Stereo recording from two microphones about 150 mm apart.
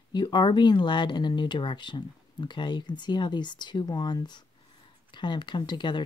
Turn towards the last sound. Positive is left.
turn(degrees=30)  # may be behind; listen again after turning